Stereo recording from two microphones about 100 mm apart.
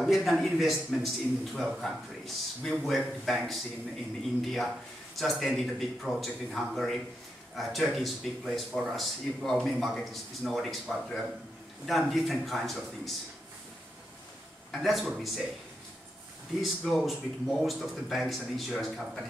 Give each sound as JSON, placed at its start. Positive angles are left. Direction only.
{"t": 0.0, "sound": "speech", "side_deg": 0}
{"t": 14.7, "sound": "speech", "side_deg": 0}
{"t": 16.6, "sound": "speech", "side_deg": 0}